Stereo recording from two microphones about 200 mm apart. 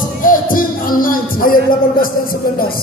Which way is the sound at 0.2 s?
45° left (ahead or behind).